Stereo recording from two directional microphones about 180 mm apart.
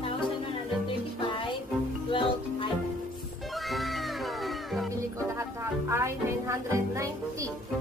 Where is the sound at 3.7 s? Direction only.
Centre (ahead or behind).